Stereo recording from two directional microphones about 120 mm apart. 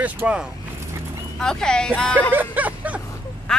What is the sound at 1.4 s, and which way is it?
Speech, 5° left (ahead or behind).